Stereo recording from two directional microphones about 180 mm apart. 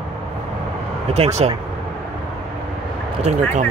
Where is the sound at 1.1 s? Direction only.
35° right (ahead or behind).